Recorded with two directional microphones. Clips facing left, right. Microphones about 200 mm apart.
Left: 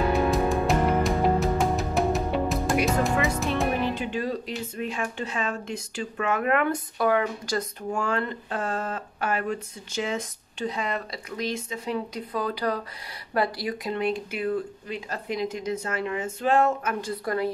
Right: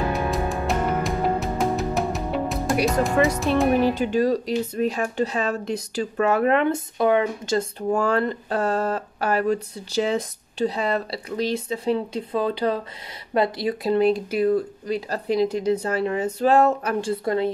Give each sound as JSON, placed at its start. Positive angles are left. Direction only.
{"t": 0.1, "sound": "music", "side_deg": 0}
{"t": 3.8, "sound": "speech", "side_deg": -40}
{"t": 7.9, "sound": "speech", "side_deg": -35}